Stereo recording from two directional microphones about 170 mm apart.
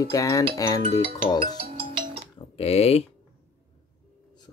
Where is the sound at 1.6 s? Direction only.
30° right (ahead or behind).